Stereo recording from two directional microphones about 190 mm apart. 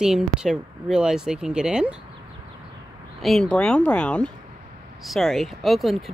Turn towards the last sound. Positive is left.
turn(degrees=0)  # may be behind; listen again after turning